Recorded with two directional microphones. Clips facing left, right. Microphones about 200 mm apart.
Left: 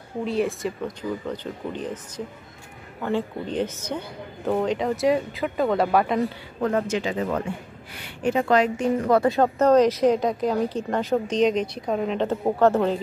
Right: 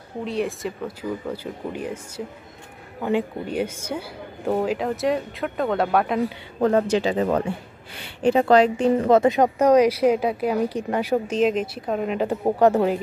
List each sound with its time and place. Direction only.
0.2 s a woman's voice: centre (ahead or behind)
6.6 s speech: 35° right (ahead or behind); by 13.0 s 15° right (ahead or behind)